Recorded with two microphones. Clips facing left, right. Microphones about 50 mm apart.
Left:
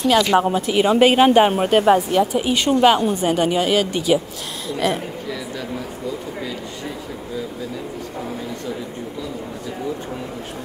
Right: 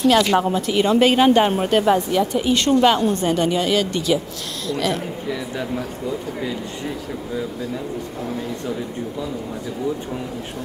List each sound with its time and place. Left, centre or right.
0.0 s a woman's voice: centre
0.4 s a woman's voice: centre